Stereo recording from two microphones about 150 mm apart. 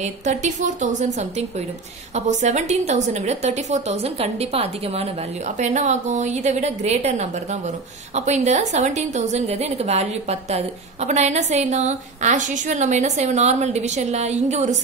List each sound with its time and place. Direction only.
0.0 s a woman's voice: 50° right (ahead or behind)
2.1 s a woman's voice: 50° right (ahead or behind)
5.6 s a woman's voice: 55° right (ahead or behind)